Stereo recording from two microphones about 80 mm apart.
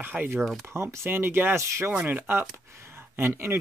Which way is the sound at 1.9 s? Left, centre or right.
Centre.